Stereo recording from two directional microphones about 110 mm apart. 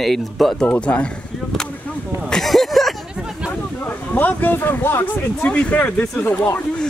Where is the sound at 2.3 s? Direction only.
Centre (ahead or behind).